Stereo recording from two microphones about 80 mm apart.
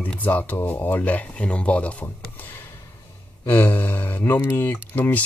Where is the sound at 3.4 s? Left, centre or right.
Left.